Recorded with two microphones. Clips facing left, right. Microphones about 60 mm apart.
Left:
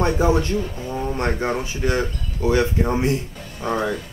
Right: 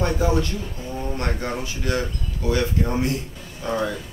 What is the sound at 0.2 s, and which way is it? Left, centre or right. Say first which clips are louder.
Speech: left 3 dB; left.